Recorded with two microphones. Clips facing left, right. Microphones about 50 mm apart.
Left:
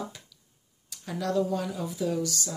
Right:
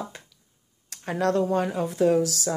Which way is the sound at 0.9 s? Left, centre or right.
Right.